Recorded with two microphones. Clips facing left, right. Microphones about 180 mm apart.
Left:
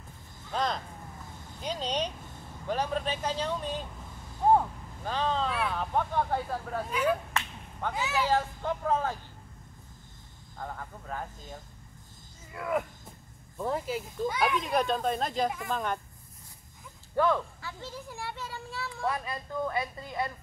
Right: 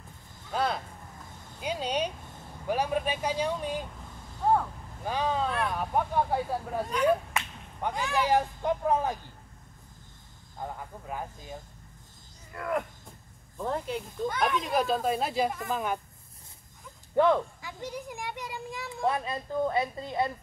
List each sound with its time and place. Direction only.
0.5 s a sound: 10° right (ahead or behind)
2.6 s speech: 10° right (ahead or behind)
5.0 s speech: 10° right (ahead or behind)
7.9 s speech: 5° left (ahead or behind)
8.2 s speech: 15° right (ahead or behind)
10.6 s speech: 15° right (ahead or behind)
12.4 s speech: 5° left (ahead or behind)
17.1 s a child's voice: 20° right (ahead or behind)